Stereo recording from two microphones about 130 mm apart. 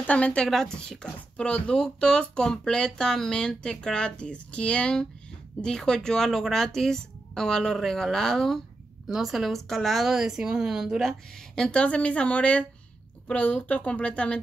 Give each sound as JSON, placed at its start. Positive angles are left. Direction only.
{"t": 0.0, "sound": "speech", "side_deg": 10}